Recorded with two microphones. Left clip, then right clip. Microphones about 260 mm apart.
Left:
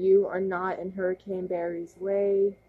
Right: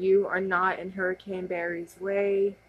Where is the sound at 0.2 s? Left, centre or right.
Right.